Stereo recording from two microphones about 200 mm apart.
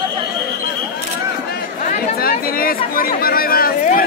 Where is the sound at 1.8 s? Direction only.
45° left (ahead or behind).